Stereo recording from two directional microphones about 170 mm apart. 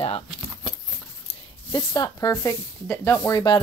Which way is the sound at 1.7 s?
20° left (ahead or behind).